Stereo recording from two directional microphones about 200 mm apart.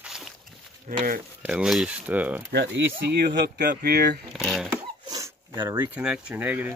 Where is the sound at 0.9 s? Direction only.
35° right (ahead or behind).